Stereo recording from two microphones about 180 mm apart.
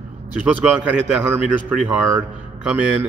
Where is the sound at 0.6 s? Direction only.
5° right (ahead or behind).